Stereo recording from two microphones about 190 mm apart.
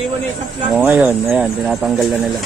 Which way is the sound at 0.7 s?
10° right (ahead or behind).